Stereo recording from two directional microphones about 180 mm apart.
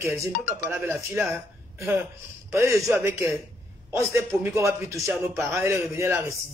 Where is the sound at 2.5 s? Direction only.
15° right (ahead or behind).